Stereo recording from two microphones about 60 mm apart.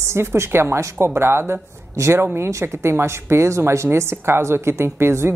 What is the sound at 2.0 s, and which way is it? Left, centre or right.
A woman's voice, right.